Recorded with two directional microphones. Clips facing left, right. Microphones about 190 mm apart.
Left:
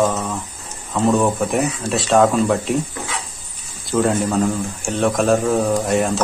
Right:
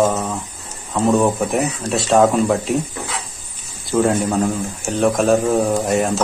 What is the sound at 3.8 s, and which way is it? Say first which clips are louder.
Speech: right 1 dB; centre (ahead or behind).